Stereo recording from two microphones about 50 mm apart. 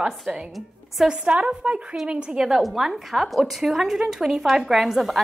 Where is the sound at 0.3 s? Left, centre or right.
Right.